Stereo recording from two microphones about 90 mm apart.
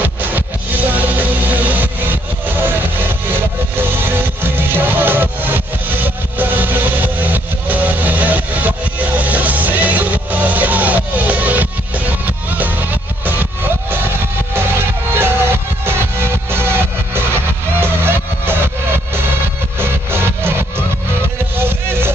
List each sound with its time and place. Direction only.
0.0 s music: 20° right (ahead or behind)
13.2 s vehicle: 20° right (ahead or behind)
14.5 s music: 25° right (ahead or behind)
19.8 s music: 25° right (ahead or behind)